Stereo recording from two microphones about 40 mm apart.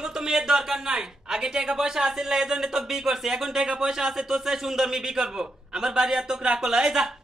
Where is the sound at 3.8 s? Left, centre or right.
Centre.